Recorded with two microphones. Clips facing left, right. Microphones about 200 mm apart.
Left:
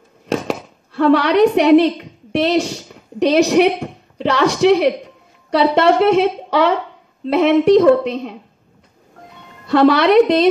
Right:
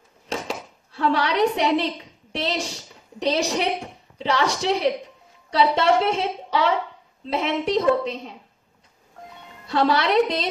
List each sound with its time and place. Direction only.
0.3 s a woman's voice: 60° left (ahead or behind)
9.7 s a woman's voice: 65° left (ahead or behind)